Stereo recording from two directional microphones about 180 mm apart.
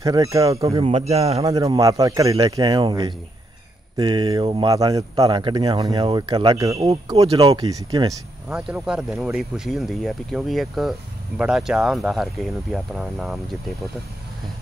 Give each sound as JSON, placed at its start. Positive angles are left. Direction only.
{"t": 0.0, "sound": "speech", "side_deg": -20}
{"t": 0.7, "sound": "a man's voice", "side_deg": -35}
{"t": 1.4, "sound": "speech", "side_deg": -20}
{"t": 6.9, "sound": "a man's voice", "side_deg": -35}
{"t": 7.4, "sound": "speech", "side_deg": -20}
{"t": 8.5, "sound": "speech", "side_deg": -5}